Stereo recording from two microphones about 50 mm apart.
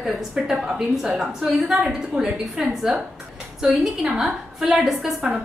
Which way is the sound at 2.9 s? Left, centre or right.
Centre.